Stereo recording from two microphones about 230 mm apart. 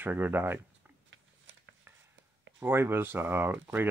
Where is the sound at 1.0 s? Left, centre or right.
Right.